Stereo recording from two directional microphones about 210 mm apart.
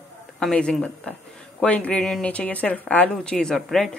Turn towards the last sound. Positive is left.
turn(degrees=0)  # may be behind; listen again after turning